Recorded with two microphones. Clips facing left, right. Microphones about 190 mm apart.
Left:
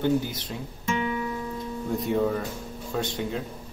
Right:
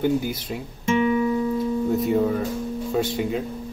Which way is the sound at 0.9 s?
25° right (ahead or behind).